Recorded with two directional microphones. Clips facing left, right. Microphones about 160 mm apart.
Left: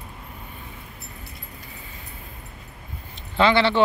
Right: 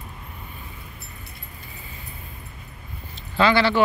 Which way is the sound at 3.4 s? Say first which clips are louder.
Even; 25° left (ahead or behind).